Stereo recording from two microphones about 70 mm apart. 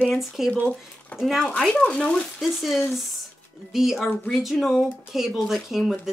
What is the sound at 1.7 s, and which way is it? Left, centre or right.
Speech, centre.